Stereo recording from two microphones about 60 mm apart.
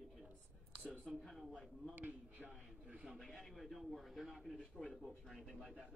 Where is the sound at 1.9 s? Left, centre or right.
Right.